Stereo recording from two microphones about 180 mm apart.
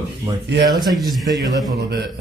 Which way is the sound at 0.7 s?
20° right (ahead or behind).